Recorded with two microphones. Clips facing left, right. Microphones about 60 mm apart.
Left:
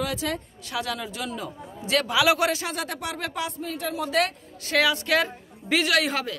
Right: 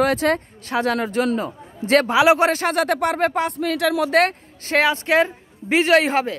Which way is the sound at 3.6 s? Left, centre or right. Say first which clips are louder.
Right 10 dB; right.